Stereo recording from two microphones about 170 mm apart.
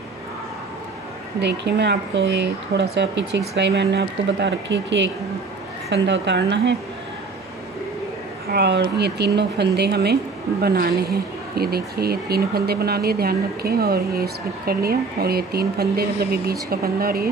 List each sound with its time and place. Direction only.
1.4 s speech: 85° right
8.5 s speech: 85° right; by 17.3 s 60° right (ahead or behind)